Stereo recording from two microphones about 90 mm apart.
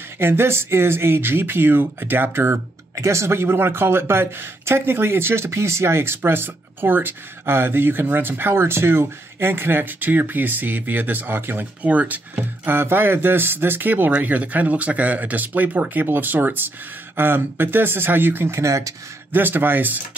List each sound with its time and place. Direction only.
0.2 s speech: 25° right (ahead or behind)
19.3 s speech: 20° right (ahead or behind)